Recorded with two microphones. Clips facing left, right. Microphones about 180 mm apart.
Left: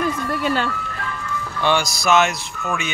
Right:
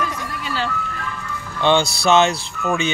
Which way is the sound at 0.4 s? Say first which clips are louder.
Left 4 dB; 55° left (ahead or behind).